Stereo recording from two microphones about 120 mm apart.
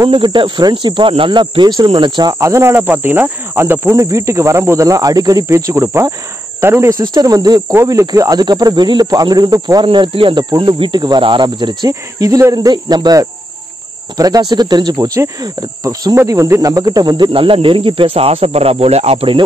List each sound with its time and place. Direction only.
0.1 s speech: 40° right (ahead or behind)
2.4 s cricket: 25° right (ahead or behind)
7.7 s speech: 25° right (ahead or behind)
9.8 s cricket: 45° right (ahead or behind)
10.6 s speech: 40° right (ahead or behind)
11.9 s speech: 30° right (ahead or behind)
16.2 s cricket: 25° right (ahead or behind); by 19.3 s 60° right (ahead or behind)